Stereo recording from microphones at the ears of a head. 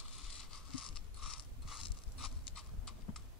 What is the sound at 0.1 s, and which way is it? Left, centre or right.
Mechanisms, left.